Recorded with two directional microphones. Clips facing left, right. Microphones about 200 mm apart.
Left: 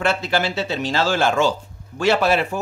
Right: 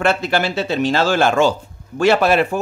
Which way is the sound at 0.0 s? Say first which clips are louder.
Right 3 dB; 55° right (ahead or behind).